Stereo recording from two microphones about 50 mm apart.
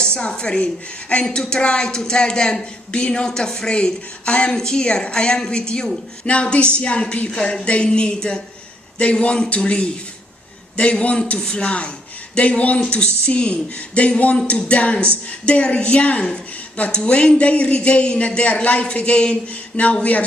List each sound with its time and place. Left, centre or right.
0.0 s speech: centre